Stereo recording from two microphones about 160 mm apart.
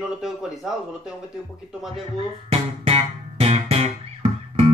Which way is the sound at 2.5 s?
40° right (ahead or behind).